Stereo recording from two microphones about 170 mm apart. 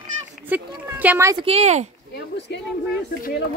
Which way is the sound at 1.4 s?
40° right (ahead or behind).